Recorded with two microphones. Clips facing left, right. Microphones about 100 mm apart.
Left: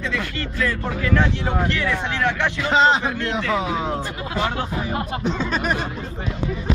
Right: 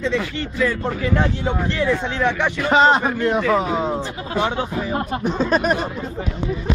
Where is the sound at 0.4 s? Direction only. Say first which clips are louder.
Right 3 dB; 75° left (ahead or behind).